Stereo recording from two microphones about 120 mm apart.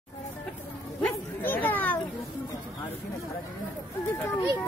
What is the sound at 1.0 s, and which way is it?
Bow-wow, 15° left (ahead or behind).